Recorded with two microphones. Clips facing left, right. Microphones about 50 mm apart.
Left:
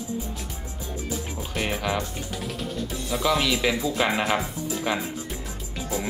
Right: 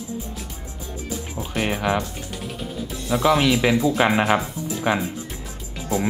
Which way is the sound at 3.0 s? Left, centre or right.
Right.